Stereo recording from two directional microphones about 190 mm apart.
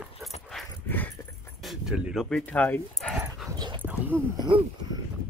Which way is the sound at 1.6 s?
Centre (ahead or behind).